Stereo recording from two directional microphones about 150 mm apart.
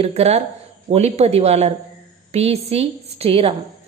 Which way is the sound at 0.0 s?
45° right (ahead or behind).